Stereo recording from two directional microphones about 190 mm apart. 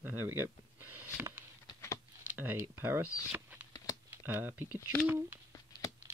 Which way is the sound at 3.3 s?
10° right (ahead or behind).